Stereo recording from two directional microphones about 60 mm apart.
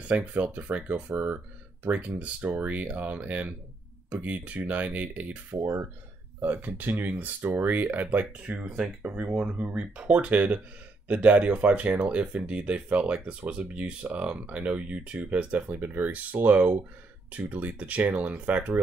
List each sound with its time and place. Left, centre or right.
0.3 s speech: right
9.3 s speech: centre